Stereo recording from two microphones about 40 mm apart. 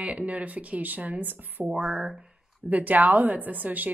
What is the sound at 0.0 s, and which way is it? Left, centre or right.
Speech, right.